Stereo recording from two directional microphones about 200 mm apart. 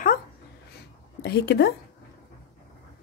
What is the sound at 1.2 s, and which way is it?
Speech, 55° left (ahead or behind).